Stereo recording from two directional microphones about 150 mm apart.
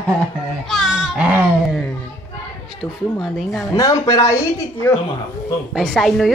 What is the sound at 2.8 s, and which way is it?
Speech, centre (ahead or behind).